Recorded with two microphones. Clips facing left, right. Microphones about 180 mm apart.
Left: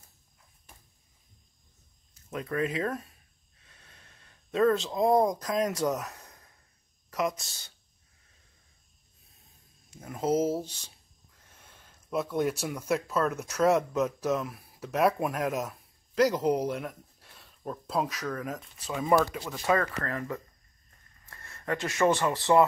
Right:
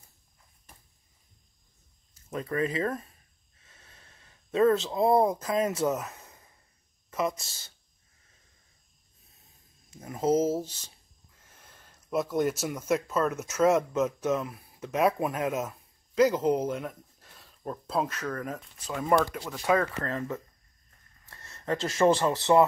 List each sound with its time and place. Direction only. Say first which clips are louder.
2.3 s speech: right 1 dB; centre (ahead or behind)
3.6 s a sound: right 1 dB; centre (ahead or behind)
7.1 s speech: even; centre (ahead or behind)
9.9 s speech: right 3 dB; 5° right (ahead or behind)
10.3 s speech: right 1 dB; 10° left (ahead or behind)
10.6 s speech: right 1 dB; 5° right (ahead or behind)
20.0 s speech: right 1 dB; 20° right (ahead or behind)